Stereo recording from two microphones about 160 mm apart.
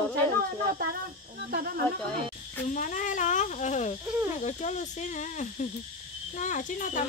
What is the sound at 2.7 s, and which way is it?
Speech, 50° left (ahead or behind).